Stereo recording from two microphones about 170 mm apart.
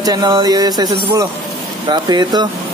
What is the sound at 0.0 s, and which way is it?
Speech, 25° right (ahead or behind).